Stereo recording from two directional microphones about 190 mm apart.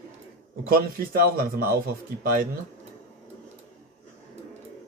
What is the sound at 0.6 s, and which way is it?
Speech, 50° right (ahead or behind).